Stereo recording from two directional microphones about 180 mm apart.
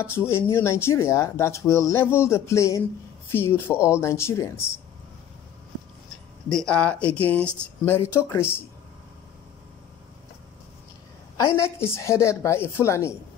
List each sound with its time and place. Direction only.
0.0 s speech: 15° left (ahead or behind)
6.5 s speech: 5° left (ahead or behind)
11.3 s speech: 15° left (ahead or behind)